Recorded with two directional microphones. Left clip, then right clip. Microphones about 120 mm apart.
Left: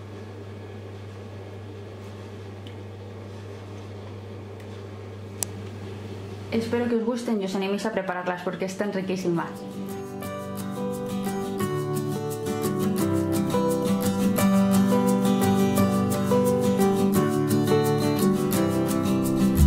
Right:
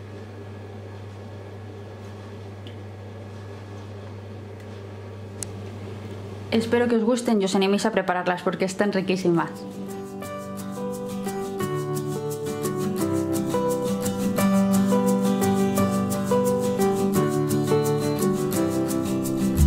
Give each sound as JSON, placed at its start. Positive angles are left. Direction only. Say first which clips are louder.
{"t": 6.5, "sound": "speech", "louder": "right 4 dB", "side_deg": -40}
{"t": 10.2, "sound": "music", "louder": "even", "side_deg": 0}